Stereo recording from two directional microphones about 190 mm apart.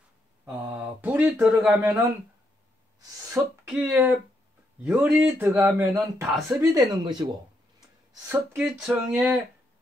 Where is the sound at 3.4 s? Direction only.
10° right (ahead or behind).